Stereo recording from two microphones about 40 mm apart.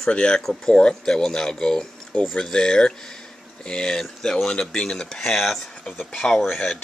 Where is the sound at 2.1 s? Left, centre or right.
Left.